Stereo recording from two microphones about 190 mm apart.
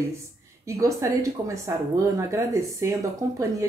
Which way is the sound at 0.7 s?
15° right (ahead or behind).